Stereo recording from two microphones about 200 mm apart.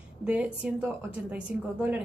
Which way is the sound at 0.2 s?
5° right (ahead or behind).